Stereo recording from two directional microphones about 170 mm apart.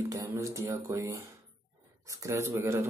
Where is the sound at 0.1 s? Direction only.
20° right (ahead or behind).